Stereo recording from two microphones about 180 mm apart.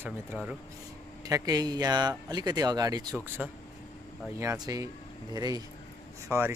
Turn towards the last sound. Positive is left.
turn(degrees=-15)  # may be behind; listen again after turning